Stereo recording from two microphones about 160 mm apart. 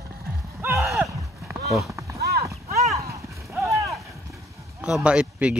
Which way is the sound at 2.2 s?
85° right.